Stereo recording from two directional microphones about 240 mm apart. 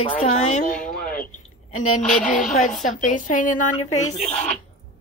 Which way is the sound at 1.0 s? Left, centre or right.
Left.